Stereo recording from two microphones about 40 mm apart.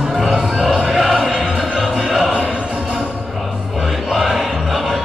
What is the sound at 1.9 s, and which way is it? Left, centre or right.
Music, centre.